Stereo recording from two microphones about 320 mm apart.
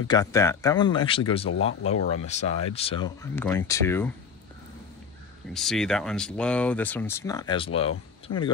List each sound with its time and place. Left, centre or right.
0.1 s speech: centre
1.5 s speech: left
1.9 s speech: centre
5.5 s speech: centre